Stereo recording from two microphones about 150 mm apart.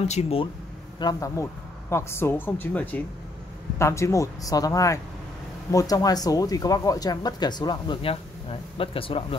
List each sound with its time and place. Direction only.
0.1 s speech: 45° left (ahead or behind)
0.9 s speech: 25° left (ahead or behind)